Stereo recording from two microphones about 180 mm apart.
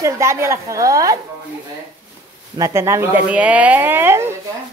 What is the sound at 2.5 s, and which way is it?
Speech, 15° right (ahead or behind).